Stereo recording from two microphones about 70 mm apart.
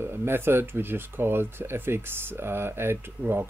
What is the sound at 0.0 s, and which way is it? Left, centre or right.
Speech, right.